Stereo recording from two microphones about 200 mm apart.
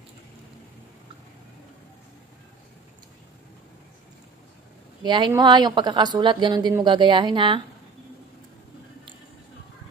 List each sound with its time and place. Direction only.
5.0 s speech: 25° right (ahead or behind)